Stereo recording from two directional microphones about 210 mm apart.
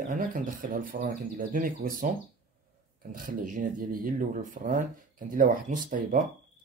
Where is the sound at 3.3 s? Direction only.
40° right (ahead or behind).